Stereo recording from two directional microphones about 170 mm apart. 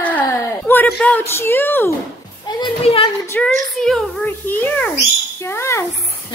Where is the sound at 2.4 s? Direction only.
25° left (ahead or behind).